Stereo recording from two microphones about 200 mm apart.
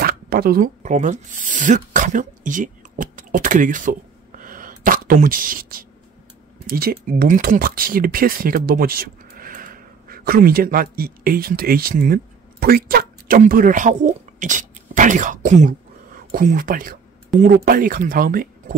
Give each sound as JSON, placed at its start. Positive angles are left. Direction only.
{"t": 0.0, "sound": "speech", "side_deg": -50}
{"t": 4.4, "sound": "a sound", "side_deg": -40}
{"t": 6.7, "sound": "speech", "side_deg": -45}